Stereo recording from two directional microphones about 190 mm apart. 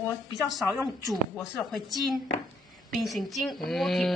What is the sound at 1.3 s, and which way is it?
A woman's voice, centre (ahead or behind).